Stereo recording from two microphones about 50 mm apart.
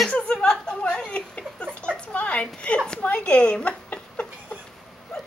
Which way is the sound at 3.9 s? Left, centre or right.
Left.